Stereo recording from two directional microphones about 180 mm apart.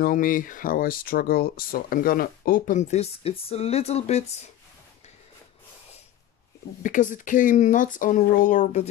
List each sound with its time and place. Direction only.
0.0 s speech: 50° left (ahead or behind)
6.8 s speech: 45° left (ahead or behind)